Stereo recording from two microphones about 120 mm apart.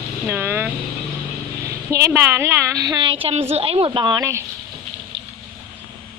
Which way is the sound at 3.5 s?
55° right (ahead or behind).